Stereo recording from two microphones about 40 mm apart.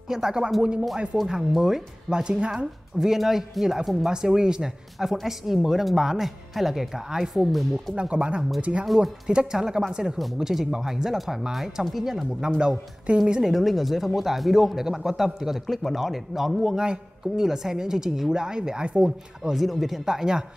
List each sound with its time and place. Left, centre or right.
0.1 s speech: centre
3.0 s speech: centre
5.1 s speech: centre
7.9 s speech: right
8.8 s speech: centre
9.3 s speech: right
13.1 s speech: right
13.4 s speech: centre
16.6 s speech: centre
19.5 s speech: centre
20.1 s speech: centre